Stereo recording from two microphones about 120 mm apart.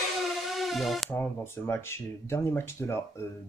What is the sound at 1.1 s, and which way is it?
Speech, 20° left (ahead or behind).